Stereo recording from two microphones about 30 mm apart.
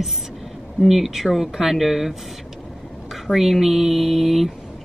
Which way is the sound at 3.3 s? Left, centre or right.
Right.